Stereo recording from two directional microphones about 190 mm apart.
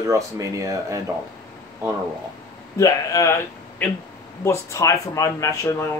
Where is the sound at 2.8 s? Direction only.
20° left (ahead or behind).